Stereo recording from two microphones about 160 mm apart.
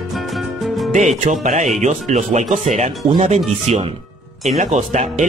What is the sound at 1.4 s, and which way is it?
Speech, 50° right (ahead or behind).